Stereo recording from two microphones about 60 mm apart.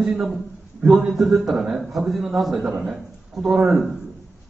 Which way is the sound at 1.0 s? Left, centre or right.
Centre.